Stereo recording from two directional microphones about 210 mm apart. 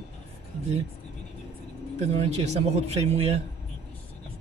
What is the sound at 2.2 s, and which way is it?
Speech, 30° right (ahead or behind).